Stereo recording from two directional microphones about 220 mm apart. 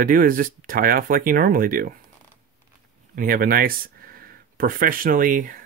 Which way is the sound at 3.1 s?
40° right (ahead or behind).